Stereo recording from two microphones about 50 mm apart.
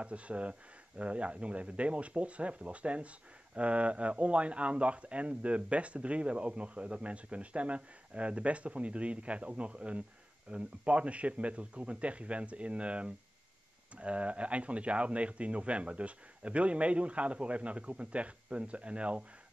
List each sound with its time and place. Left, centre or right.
0.0 s speech: right